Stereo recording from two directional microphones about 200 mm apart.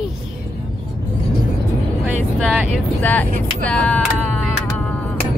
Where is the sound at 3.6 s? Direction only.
5° left (ahead or behind).